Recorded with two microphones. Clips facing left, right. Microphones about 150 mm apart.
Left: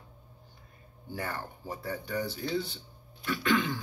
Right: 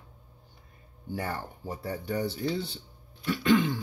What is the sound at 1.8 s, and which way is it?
Speech, 30° right (ahead or behind).